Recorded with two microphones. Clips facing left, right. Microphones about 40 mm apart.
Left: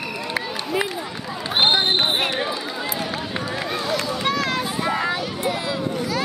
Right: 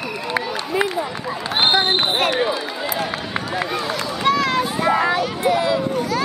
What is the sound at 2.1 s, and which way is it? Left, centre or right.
Run, centre.